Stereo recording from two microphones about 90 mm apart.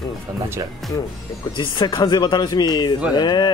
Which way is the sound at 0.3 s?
45° right (ahead or behind).